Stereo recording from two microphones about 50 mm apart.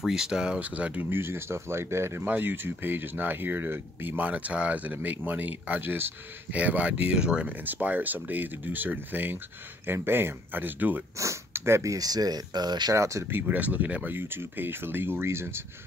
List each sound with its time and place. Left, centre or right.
0.0 s speech: centre
0.6 s speech: right
1.1 s speech: right
2.2 s speech: right
4.2 s speech: right
6.5 s speech: right
7.6 s speech: right
11.5 s speech: right
13.2 s speech: right
14.1 s speech: right